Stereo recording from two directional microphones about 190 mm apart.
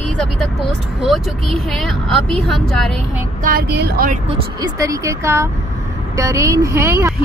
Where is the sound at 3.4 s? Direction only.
55° right (ahead or behind).